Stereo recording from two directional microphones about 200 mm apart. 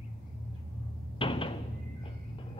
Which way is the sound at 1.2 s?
25° left (ahead or behind).